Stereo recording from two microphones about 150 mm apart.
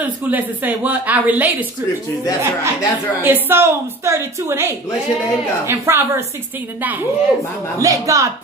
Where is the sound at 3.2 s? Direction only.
15° right (ahead or behind).